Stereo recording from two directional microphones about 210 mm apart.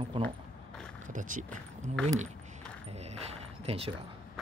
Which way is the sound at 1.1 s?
40° right (ahead or behind).